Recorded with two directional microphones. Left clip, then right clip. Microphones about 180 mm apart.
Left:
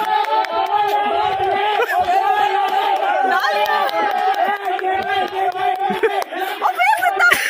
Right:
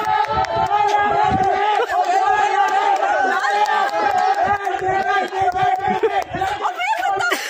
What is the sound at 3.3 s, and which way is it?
Run, 35° left (ahead or behind).